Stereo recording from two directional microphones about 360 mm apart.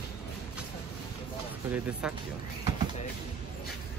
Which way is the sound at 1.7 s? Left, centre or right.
Centre.